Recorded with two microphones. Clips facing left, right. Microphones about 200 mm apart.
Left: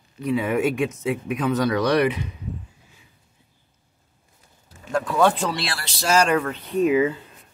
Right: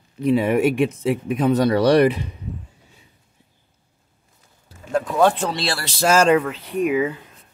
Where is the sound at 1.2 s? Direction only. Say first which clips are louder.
Right 4 dB; 35° right (ahead or behind).